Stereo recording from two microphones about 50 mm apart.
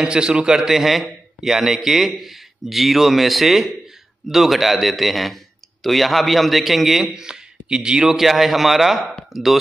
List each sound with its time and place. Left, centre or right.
0.0 s a man's voice: centre
0.6 s a man's voice: centre
7.2 s speech: centre